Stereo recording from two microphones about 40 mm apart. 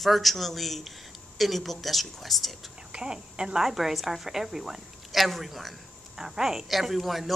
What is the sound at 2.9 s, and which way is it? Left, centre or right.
Speech, right.